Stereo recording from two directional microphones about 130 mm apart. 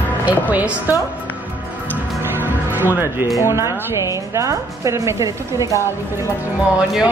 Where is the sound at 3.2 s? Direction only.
25° left (ahead or behind).